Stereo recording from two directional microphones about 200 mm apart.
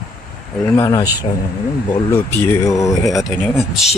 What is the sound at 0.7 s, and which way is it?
Speech, 20° left (ahead or behind).